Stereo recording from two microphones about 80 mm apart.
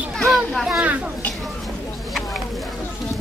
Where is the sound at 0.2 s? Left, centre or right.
Centre.